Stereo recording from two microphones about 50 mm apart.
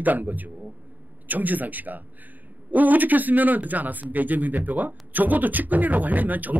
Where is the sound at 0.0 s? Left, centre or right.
Right.